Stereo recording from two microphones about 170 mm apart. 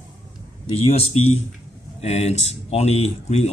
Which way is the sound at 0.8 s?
35° left (ahead or behind).